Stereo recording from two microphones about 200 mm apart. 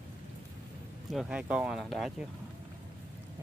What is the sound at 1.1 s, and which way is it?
Speech, 5° right (ahead or behind).